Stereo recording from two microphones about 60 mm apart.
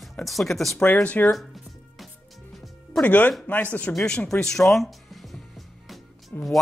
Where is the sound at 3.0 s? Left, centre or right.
Left.